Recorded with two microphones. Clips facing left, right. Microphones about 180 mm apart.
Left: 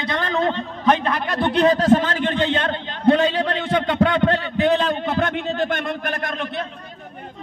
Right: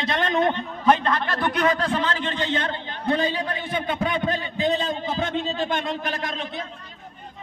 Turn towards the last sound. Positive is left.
turn(degrees=60)  # may be behind; listen again after turning